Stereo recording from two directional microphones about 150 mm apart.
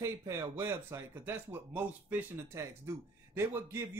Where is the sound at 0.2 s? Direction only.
15° right (ahead or behind).